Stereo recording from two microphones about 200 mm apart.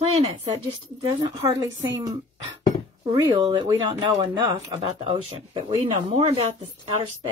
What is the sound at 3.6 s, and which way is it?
A woman's voice, 20° right (ahead or behind).